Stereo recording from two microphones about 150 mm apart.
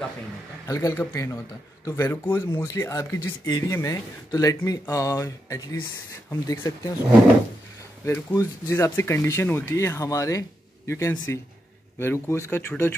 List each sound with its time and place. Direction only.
0.7 s speech: 20° left (ahead or behind)
8.0 s speech: 20° left (ahead or behind)